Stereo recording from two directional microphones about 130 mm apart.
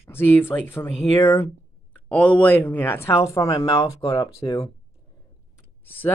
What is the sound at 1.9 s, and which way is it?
Speech, 10° left (ahead or behind).